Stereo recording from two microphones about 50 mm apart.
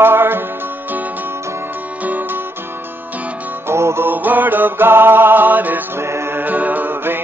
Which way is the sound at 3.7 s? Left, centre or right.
Right.